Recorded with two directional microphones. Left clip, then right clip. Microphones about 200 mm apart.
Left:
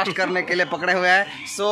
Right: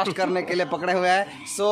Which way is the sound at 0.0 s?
Centre (ahead or behind).